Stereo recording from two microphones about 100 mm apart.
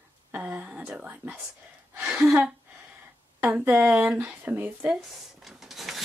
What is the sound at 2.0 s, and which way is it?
A woman's voice, 15° right (ahead or behind).